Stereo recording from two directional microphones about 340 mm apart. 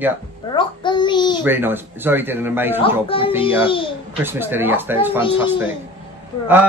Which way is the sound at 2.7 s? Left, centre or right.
Centre.